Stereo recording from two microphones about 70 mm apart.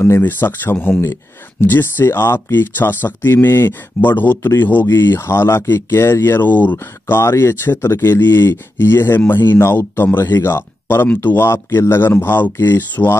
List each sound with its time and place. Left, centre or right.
0.2 s speech: left
7.2 s speech: left